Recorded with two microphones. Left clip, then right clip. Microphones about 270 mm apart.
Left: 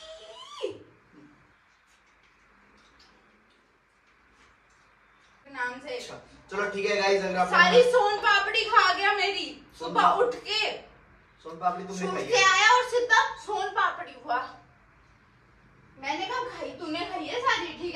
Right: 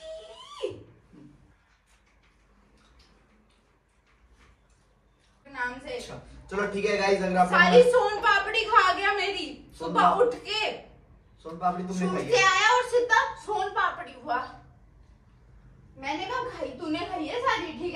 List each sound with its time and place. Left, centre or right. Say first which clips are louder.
5.5 s a woman's voice: even; centre
16.8 s a child's voice: right 1 dB; centre